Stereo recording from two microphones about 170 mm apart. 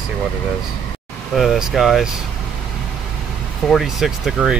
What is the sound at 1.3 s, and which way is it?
Speech, centre (ahead or behind).